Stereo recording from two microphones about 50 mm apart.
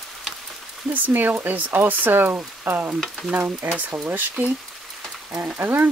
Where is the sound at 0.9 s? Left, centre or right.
Right.